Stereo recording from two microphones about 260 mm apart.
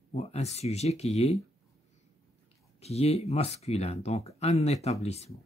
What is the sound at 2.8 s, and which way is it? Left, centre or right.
Speech, left.